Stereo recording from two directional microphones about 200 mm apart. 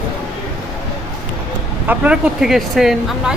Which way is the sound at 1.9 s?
5° right (ahead or behind).